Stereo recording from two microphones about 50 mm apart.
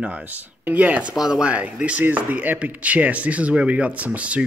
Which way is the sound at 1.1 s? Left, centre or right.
Centre.